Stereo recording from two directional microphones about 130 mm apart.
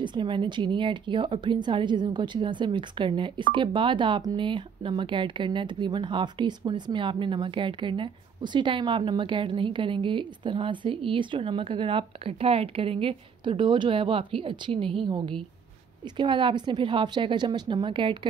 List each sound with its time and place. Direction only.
0.0 s speech: 40° right (ahead or behind)